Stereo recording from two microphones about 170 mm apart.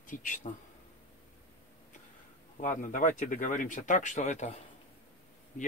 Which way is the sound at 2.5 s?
50° left (ahead or behind).